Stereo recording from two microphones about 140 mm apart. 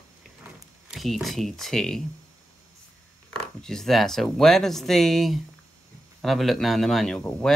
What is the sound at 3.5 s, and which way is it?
Speech, 5° left (ahead or behind).